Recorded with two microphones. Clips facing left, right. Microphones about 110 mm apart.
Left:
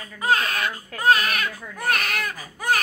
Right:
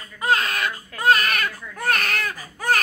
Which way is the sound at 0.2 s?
5° left (ahead or behind).